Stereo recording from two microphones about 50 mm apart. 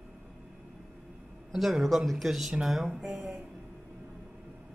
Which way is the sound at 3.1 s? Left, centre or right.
Right.